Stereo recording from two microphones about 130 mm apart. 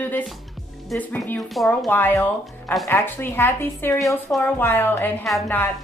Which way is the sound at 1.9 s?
15° left (ahead or behind).